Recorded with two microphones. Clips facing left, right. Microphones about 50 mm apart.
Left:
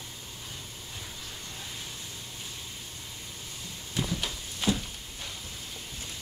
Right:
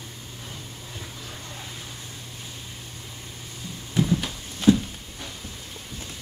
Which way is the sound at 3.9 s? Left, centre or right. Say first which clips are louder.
Right 8 dB; centre.